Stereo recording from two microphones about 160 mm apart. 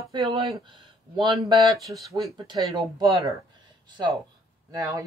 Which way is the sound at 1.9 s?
15° right (ahead or behind).